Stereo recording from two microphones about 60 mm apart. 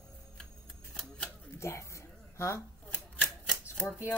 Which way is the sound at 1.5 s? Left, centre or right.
Left.